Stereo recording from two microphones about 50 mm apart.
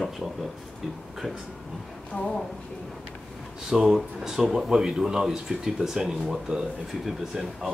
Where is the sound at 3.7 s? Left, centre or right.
Centre.